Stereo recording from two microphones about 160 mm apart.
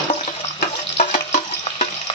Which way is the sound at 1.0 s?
50° left (ahead or behind).